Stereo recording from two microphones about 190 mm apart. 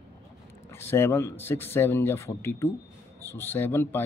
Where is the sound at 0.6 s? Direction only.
15° left (ahead or behind).